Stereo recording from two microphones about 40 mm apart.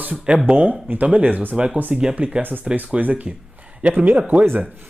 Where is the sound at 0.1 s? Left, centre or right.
Right.